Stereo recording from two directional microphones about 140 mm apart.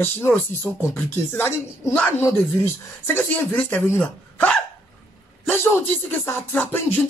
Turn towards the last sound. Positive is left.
turn(degrees=15)  # may be behind; listen again after turning